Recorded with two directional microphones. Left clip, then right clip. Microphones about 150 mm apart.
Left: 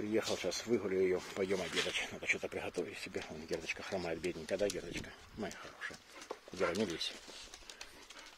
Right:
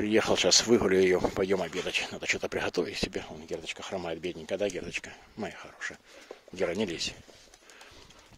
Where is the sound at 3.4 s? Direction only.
20° right (ahead or behind); by 5.9 s 40° right (ahead or behind).